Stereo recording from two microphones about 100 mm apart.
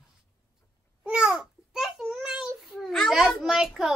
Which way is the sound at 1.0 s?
10° right (ahead or behind).